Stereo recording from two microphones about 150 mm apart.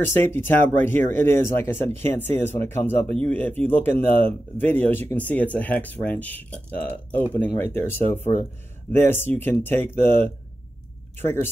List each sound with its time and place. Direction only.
0.0 s speech: 15° left (ahead or behind)